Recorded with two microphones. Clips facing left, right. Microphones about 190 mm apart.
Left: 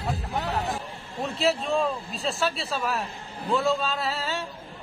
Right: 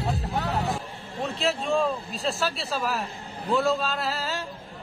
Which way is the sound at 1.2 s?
Centre (ahead or behind).